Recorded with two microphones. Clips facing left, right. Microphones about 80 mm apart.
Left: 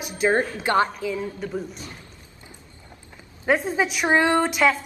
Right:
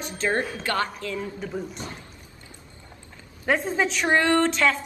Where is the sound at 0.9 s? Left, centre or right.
Centre.